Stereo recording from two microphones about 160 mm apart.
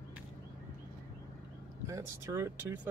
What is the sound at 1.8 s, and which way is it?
Speech, 20° right (ahead or behind).